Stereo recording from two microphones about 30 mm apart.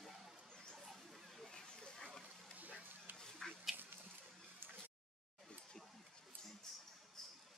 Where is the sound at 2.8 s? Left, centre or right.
Right.